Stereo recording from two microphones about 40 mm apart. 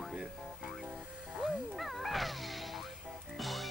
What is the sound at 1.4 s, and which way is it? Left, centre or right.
Speech, centre.